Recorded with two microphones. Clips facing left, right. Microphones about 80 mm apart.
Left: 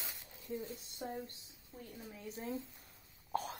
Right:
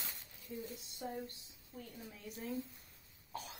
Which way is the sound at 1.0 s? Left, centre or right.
Left.